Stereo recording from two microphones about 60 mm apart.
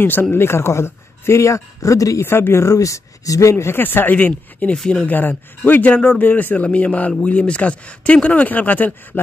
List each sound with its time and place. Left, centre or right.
0.0 s speech: left
2.2 s speech: left
2.7 s speech: left
3.8 s speech: left
4.7 s speech: centre
5.0 s speech: left